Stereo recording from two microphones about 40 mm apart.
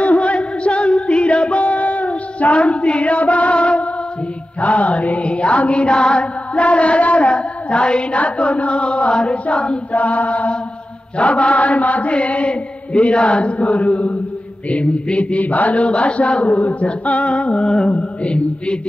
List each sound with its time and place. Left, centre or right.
0.0 s music: left
17.8 s chant: left